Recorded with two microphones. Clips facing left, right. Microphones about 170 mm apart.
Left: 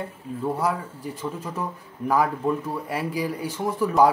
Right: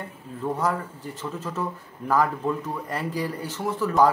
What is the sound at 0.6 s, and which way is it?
Speech, 10° left (ahead or behind).